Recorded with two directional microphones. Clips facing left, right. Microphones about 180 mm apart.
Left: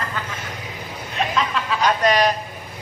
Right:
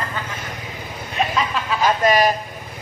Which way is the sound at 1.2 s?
5° right (ahead or behind).